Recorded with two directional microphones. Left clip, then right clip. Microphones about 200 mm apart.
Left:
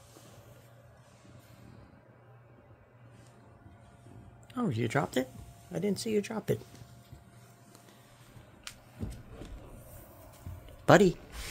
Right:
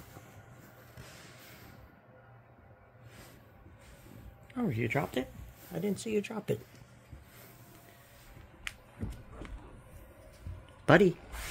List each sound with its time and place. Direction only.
4.6 s speech: 20° left (ahead or behind); by 6.6 s 40° left (ahead or behind)
10.9 s speech: 5° left (ahead or behind)